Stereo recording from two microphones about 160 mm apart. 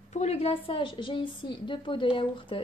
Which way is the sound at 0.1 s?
45° left (ahead or behind).